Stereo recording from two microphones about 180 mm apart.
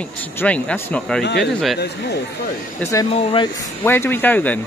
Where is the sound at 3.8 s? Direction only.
10° left (ahead or behind).